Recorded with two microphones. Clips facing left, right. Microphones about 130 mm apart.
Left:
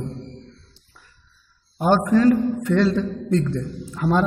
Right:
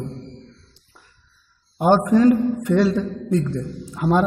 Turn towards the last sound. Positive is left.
turn(degrees=-15)  # may be behind; listen again after turning